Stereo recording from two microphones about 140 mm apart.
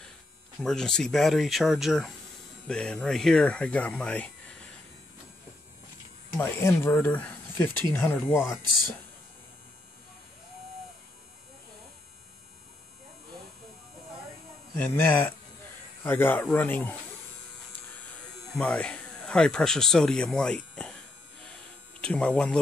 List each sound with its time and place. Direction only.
0.6 s speech: 5° left (ahead or behind)
6.3 s speech: 15° left (ahead or behind)
14.8 s speech: 15° left (ahead or behind)
18.6 s speech: 10° left (ahead or behind)
22.0 s speech: 5° left (ahead or behind)